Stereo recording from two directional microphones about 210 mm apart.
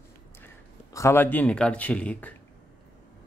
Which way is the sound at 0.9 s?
10° left (ahead or behind).